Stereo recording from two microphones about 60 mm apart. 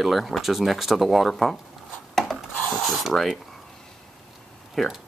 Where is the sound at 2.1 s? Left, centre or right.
Centre.